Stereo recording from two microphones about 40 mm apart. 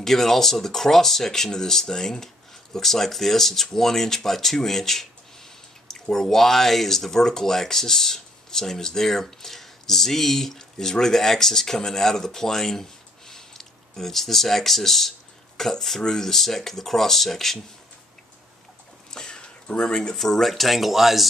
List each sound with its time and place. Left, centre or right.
0.0 s speech: centre
13.3 s a sound: centre
16.0 s speech: centre
19.0 s a sound: centre
19.8 s speech: centre
20.2 s speech: centre